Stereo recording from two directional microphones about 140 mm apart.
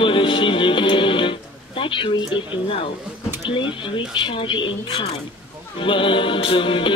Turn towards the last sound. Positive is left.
turn(degrees=35)  # may be behind; listen again after turning